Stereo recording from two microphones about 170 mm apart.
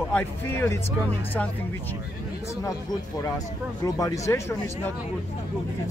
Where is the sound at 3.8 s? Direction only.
20° left (ahead or behind).